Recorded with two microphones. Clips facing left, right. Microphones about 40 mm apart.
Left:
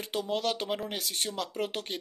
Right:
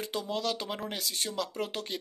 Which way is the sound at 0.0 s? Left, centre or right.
Left.